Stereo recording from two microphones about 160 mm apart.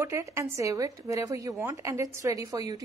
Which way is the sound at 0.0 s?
20° right (ahead or behind).